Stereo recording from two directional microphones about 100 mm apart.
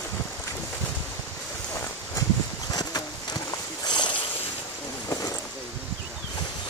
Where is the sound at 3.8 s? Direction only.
50° left (ahead or behind).